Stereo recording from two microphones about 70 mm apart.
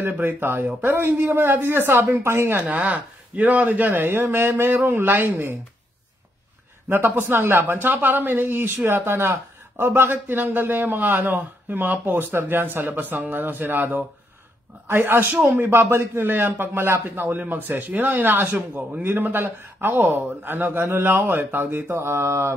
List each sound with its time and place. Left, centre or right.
0.0 s speech: right
2.6 s speech: right
6.9 s a man's voice: right